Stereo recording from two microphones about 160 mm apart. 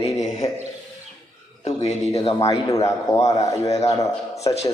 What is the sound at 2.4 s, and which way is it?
A man's voice, 20° left (ahead or behind).